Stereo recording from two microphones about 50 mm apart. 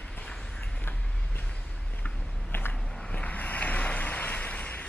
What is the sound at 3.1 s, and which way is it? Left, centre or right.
Vehicle, left.